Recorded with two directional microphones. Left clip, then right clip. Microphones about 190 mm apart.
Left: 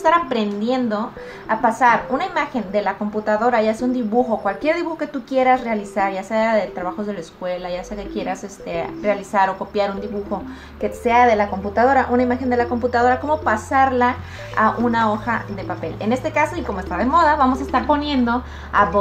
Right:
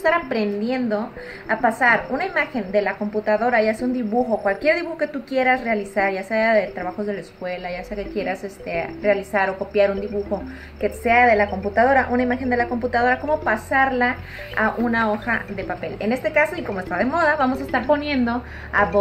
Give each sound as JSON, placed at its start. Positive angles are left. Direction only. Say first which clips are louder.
{"t": 0.0, "sound": "a woman's voice", "louder": "left 3 dB", "side_deg": 5}